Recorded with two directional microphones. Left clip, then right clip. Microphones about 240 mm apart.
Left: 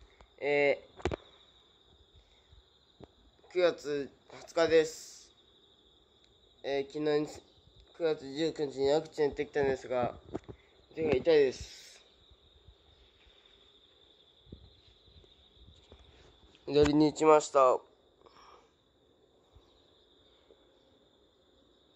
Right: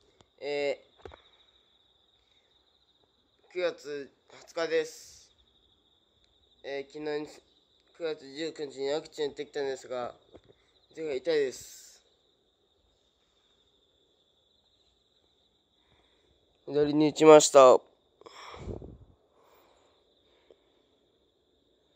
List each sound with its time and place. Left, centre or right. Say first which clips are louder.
0.4 s speech: left 3 dB; centre
3.4 s speech: left 3 dB; centre
6.6 s speech: left 4 dB; centre
16.6 s speech: left 1 dB; centre
17.0 s a sound: right 7 dB; right